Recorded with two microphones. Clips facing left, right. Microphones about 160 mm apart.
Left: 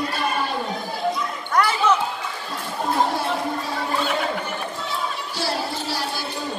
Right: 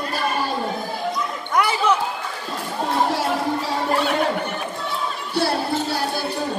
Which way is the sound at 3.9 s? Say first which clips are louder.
Right 4 dB; 65° right (ahead or behind).